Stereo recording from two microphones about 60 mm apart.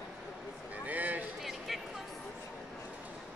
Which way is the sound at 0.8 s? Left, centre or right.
Right.